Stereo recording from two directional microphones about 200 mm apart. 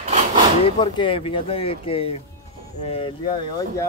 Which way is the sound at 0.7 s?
25° left (ahead or behind).